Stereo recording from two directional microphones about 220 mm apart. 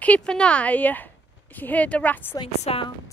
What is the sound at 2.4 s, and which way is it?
Speech, 25° left (ahead or behind).